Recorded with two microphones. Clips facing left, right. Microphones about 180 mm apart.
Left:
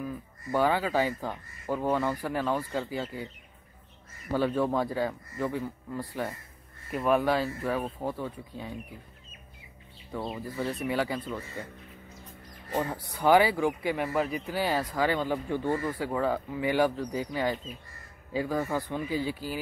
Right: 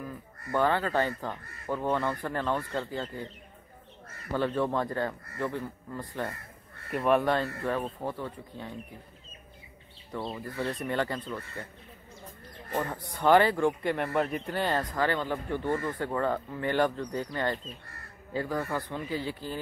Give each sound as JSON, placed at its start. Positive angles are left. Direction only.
{"t": 0.5, "sound": "speech", "side_deg": 10}
{"t": 4.3, "sound": "speech", "side_deg": 10}
{"t": 10.1, "sound": "speech", "side_deg": 10}
{"t": 12.7, "sound": "speech", "side_deg": 10}